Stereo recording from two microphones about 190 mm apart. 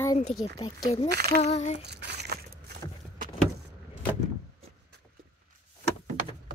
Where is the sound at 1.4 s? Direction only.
35° left (ahead or behind).